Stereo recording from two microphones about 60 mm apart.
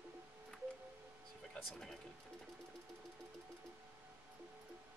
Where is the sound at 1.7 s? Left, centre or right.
Centre.